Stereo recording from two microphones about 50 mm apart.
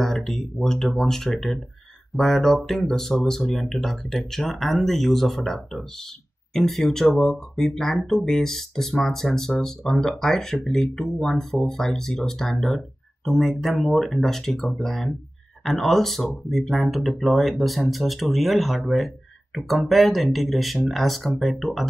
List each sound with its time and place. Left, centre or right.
0.0 s speech: centre